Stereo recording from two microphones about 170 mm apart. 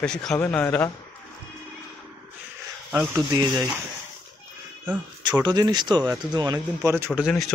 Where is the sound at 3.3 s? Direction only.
20° right (ahead or behind).